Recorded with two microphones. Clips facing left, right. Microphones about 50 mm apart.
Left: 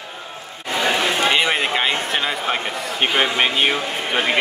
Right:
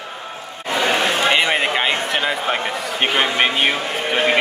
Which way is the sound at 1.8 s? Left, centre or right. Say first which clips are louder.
Right 1 dB; right.